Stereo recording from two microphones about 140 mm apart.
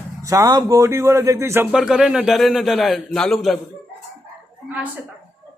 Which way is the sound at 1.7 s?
5° right (ahead or behind).